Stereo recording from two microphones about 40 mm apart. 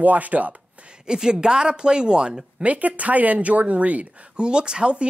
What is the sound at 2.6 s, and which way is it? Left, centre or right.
Speech, right.